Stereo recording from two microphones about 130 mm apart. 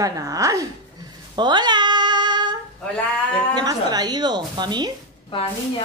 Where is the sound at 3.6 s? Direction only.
30° right (ahead or behind).